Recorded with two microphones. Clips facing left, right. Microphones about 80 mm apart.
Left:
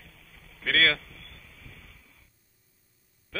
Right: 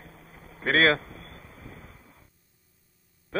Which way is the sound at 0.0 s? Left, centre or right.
Right.